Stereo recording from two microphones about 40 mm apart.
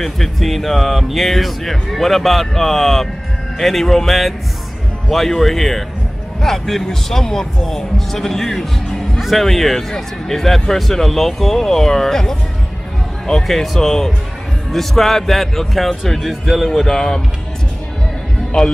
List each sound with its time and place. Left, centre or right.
0.0 s speech: centre
18.6 s speech: centre